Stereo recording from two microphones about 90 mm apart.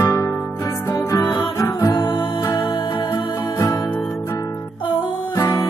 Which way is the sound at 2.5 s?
60° left (ahead or behind).